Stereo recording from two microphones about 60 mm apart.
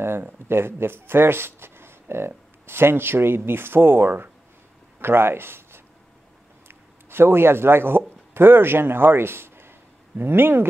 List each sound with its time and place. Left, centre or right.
0.0 s speech: right
6.7 s a sound: right
8.4 s speech: right